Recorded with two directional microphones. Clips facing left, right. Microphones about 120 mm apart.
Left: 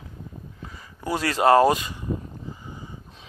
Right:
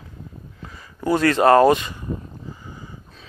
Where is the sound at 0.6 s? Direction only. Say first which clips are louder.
Right 7 dB; 25° left (ahead or behind).